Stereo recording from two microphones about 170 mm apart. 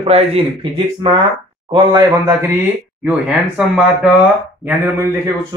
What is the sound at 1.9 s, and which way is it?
Speech, 15° right (ahead or behind).